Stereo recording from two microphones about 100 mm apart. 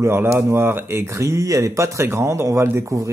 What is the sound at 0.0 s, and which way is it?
Speech, 25° right (ahead or behind).